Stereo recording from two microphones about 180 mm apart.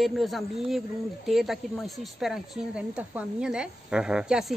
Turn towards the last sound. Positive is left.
turn(degrees=-5)  # may be behind; listen again after turning